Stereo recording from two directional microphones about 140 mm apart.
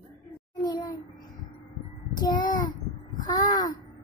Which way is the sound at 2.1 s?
30° left (ahead or behind).